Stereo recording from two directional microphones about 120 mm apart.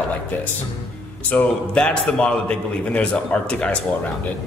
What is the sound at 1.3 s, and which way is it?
A man's voice, 10° left (ahead or behind).